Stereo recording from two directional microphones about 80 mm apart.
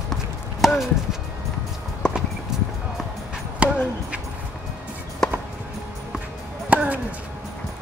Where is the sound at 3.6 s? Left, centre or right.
Centre.